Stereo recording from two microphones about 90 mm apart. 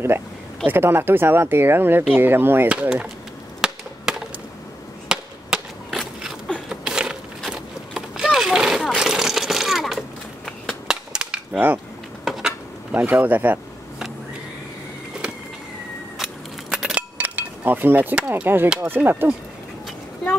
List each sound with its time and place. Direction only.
0.7 s speech: 25° right (ahead or behind)
2.7 s speech: 15° right (ahead or behind)
3.6 s chop: 5° right (ahead or behind)
5.9 s a sound: centre (ahead or behind)
7.5 s vehicle: 5° right (ahead or behind)
10.9 s cap gun: 10° right (ahead or behind)
12.3 s a sound: 5° right (ahead or behind)
12.9 s speech: 20° right (ahead or behind)
16.7 s a sound: 5° right (ahead or behind)
17.2 s speech: 20° right (ahead or behind)